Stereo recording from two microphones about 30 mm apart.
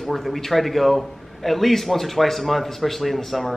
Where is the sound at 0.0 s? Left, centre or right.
Centre.